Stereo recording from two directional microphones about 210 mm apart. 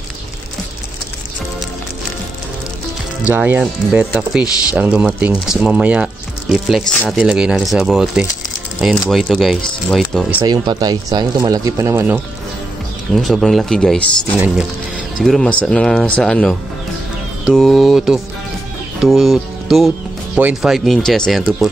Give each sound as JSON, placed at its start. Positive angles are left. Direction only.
{"t": 3.3, "sound": "speech", "side_deg": -10}
{"t": 10.4, "sound": "speech", "side_deg": -20}
{"t": 13.1, "sound": "speech", "side_deg": 0}